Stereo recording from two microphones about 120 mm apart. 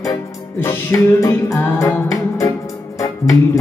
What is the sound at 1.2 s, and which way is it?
Music, 25° left (ahead or behind).